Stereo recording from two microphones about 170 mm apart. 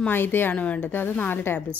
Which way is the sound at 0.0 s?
10° left (ahead or behind).